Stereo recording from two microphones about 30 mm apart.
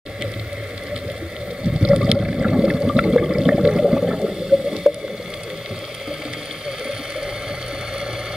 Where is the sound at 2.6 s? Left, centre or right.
Right.